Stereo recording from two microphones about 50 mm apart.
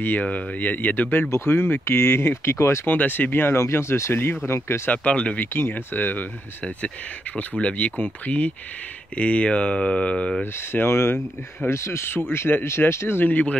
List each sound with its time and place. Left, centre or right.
0.0 s speech: left
1.3 s speech: left
2.9 s speech: left
3.5 s speech: left
4.1 s speech: left
4.5 s speech: left
4.8 s speech: left
5.4 s speech: left
7.3 s speech: left
10.4 s speech: left
12.6 s speech: left
13.2 s speech: left